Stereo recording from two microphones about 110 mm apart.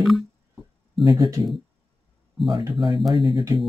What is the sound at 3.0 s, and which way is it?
Speech, centre (ahead or behind).